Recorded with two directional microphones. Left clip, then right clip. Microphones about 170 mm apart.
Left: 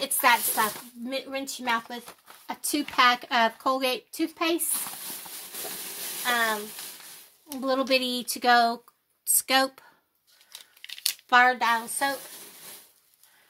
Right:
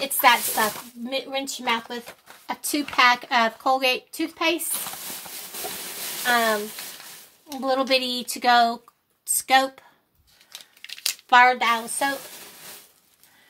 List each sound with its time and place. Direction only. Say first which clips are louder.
0.0 s speech: right 4 dB; 30° left (ahead or behind)
7.6 s speech: right 3 dB; 35° left (ahead or behind)
10.5 s crumpling: right 3 dB; 5° left (ahead or behind)
11.2 s a woman's voice: right 4 dB; 30° left (ahead or behind)